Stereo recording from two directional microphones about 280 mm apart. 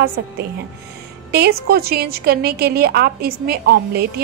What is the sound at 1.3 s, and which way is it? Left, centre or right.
A woman's voice, right.